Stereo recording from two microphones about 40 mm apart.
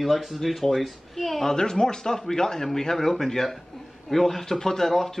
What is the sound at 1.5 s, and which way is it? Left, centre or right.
Speech, centre.